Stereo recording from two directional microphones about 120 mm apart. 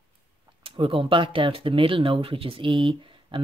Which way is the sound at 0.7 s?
50° right (ahead or behind).